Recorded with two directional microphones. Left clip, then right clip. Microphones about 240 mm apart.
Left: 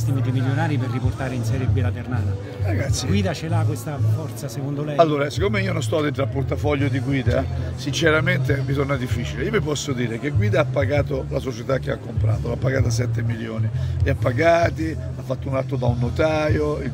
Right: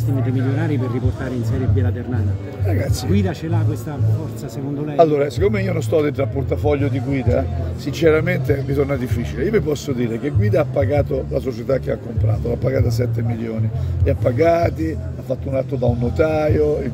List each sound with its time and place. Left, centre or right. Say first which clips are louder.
0.4 s speech: even; left
3.1 s speech: right 3 dB; left
4.9 s a man's voice: right 3 dB; centre